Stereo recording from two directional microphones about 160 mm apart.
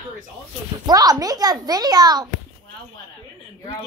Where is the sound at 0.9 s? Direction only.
25° right (ahead or behind).